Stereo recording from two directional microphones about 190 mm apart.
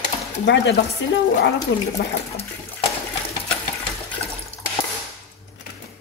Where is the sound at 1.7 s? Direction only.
70° left (ahead or behind).